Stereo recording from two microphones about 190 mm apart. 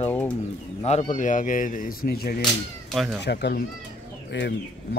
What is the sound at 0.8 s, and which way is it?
Speech, 40° left (ahead or behind).